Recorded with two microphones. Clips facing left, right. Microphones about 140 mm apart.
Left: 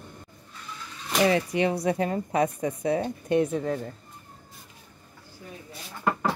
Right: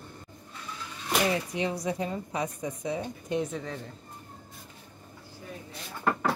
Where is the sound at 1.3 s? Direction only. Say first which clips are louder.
Left 6 dB; 65° left (ahead or behind).